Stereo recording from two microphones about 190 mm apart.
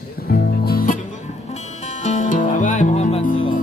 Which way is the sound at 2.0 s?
40° left (ahead or behind).